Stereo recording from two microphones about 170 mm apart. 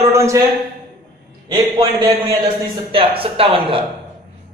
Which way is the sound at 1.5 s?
30° right (ahead or behind).